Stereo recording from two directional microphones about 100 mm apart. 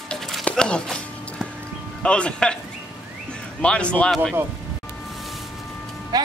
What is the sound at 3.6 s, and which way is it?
Speech, 10° left (ahead or behind).